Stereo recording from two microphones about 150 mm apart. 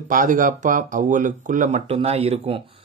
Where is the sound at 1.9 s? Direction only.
40° right (ahead or behind).